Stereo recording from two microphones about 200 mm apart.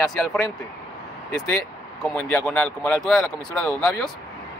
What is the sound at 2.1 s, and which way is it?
Speech, 5° left (ahead or behind).